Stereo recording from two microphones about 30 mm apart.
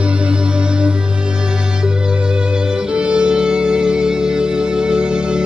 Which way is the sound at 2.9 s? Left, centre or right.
Right.